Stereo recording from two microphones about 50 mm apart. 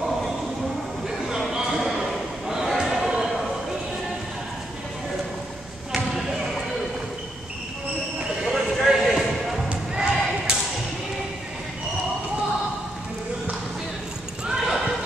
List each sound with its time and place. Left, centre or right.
1.1 s a sound: centre
1.5 s a sound: centre
6.1 s basketball bounce: centre
8.5 s basketball bounce: centre
9.7 s basketball bounce: centre
14.5 s neigh: centre